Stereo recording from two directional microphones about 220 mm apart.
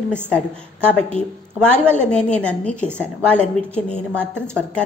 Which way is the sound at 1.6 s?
5° left (ahead or behind).